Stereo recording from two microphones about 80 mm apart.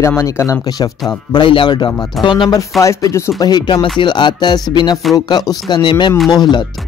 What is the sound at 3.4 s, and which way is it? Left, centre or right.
Speech, left.